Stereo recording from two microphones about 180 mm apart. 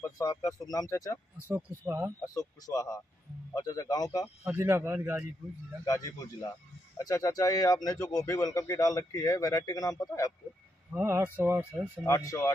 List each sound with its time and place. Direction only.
0.2 s a man's voice: 20° left (ahead or behind)
1.5 s speech: 15° right (ahead or behind)
2.2 s a man's voice: 20° left (ahead or behind)
4.5 s speech: 15° right (ahead or behind)
5.9 s a man's voice: 20° left (ahead or behind)
10.9 s speech: 15° right (ahead or behind)
12.0 s speech: 15° left (ahead or behind)